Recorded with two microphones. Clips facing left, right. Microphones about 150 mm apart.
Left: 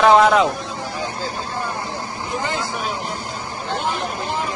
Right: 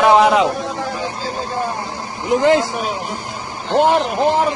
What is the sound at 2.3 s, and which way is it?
Speech, 75° right (ahead or behind).